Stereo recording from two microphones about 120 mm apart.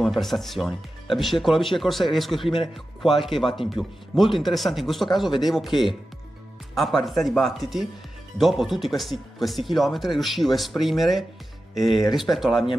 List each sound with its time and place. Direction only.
0.0 s speech: centre (ahead or behind)